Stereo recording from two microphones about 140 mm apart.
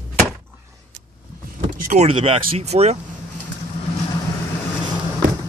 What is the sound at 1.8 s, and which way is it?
Speech, 55° right (ahead or behind).